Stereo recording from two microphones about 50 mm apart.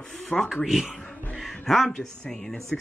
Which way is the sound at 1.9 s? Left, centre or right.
Centre.